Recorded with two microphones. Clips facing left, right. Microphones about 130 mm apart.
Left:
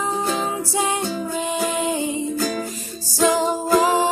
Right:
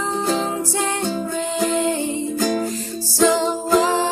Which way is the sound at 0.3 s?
35° right (ahead or behind).